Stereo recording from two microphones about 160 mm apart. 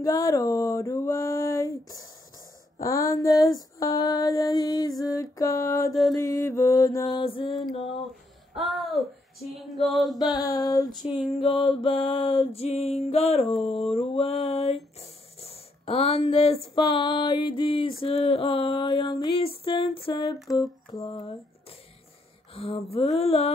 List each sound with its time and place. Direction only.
0.0 s speech: 20° left (ahead or behind)
2.8 s mantra: 20° left (ahead or behind)
7.2 s a sound: 35° left (ahead or behind)
7.5 s music: centre (ahead or behind)
8.5 s speech: centre (ahead or behind)
9.8 s music: centre (ahead or behind)
10.3 s mantra: 25° left (ahead or behind)
11.0 s music: centre (ahead or behind)
11.8 s a sound: 35° left (ahead or behind)
20.4 s mantra: 25° left (ahead or behind)
22.5 s speech: 35° left (ahead or behind)
23.1 s a sound: 40° left (ahead or behind)